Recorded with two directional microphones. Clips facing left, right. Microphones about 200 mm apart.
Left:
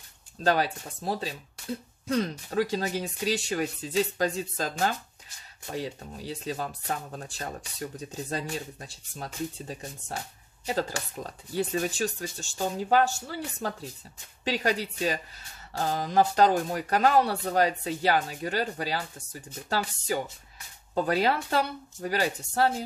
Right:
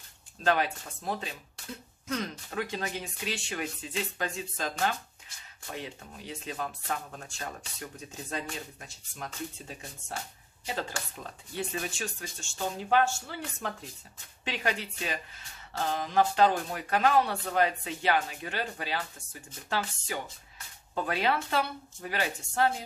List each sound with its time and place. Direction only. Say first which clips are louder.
0.4 s speech: left 2 dB; 35° left (ahead or behind)